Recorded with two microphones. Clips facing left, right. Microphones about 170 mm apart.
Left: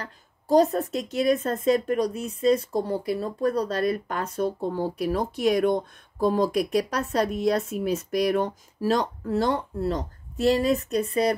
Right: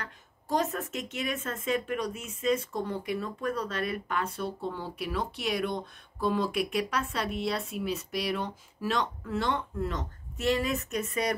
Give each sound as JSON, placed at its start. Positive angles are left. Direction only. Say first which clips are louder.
{"t": 0.0, "sound": "speech", "louder": "left 4 dB", "side_deg": 35}